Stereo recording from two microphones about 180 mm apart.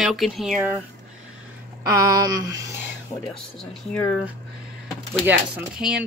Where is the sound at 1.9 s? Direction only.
20° right (ahead or behind).